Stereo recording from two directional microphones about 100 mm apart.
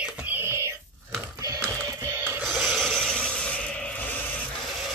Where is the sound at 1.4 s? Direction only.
35° right (ahead or behind).